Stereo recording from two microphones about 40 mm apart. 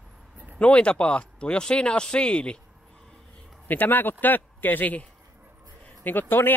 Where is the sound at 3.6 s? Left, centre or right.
Left.